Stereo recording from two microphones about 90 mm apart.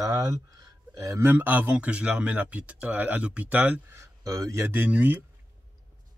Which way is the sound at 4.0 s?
35° right (ahead or behind).